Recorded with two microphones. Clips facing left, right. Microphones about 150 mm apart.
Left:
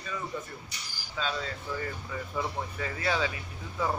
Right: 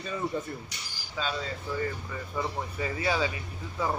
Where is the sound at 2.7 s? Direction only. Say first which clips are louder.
Right 2 dB; 10° right (ahead or behind).